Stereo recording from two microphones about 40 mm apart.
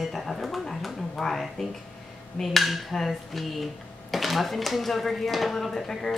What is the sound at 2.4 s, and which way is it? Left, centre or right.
Speech, centre.